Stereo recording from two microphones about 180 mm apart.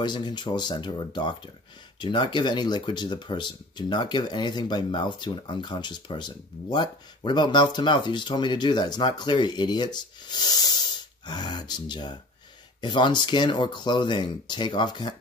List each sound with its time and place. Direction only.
0.0 s speech: 25° left (ahead or behind)